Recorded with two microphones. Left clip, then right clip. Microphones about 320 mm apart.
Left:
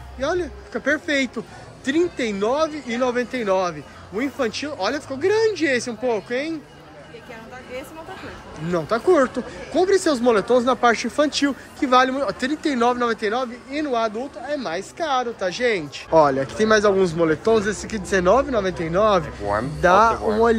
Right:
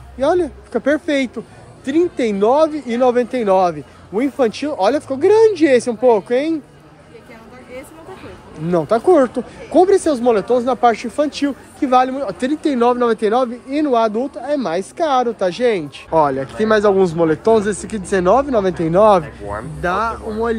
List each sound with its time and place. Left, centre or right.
0.2 s speech: centre
8.6 s speech: centre
16.1 s speech: centre
19.8 s speech: centre